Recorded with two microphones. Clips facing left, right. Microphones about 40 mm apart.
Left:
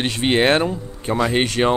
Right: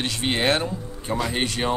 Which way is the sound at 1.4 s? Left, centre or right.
Left.